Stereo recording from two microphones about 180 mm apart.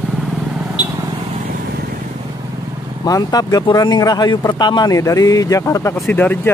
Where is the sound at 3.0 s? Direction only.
20° left (ahead or behind).